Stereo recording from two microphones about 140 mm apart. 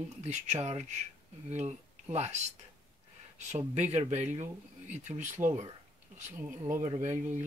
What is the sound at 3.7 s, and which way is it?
Speech, 55° right (ahead or behind).